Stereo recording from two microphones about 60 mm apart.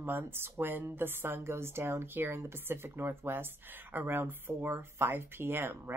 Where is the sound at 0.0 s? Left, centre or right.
Right.